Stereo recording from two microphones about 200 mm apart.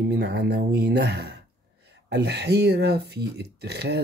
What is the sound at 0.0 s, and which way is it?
Speech, 55° right (ahead or behind).